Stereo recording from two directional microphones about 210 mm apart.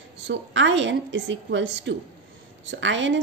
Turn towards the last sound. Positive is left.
turn(degrees=-60)  # may be behind; listen again after turning